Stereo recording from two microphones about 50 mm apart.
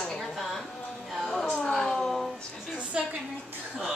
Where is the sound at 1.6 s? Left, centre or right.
Centre.